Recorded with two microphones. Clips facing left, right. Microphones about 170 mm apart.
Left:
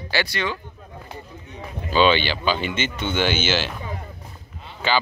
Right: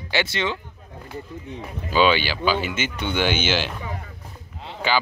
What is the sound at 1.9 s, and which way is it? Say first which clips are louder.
Speech: left 1 dB; 10° right (ahead or behind).